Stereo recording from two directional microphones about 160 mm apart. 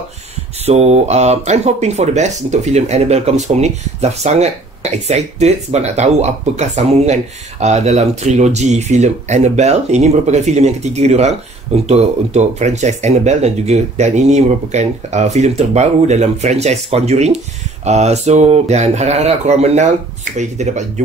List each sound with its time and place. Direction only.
0.7 s speech: 40° right (ahead or behind)